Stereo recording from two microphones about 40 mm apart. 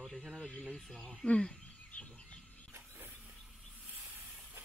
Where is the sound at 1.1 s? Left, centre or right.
Left.